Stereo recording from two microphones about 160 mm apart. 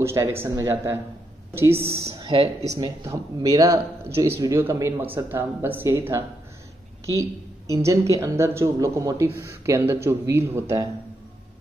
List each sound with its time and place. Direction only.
0.0 s speech: 15° right (ahead or behind)
2.1 s speech: 30° right (ahead or behind)